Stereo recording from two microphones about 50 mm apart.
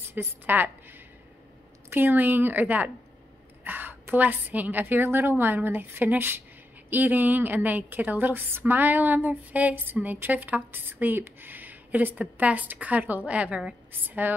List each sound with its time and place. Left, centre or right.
0.1 s a woman's voice: right
3.6 s a sound: right
4.1 s a woman's voice: right
14.0 s a woman's voice: right